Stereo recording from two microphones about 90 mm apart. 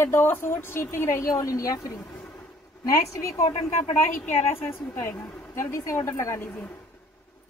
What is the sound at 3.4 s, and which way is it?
Speech, 90° left.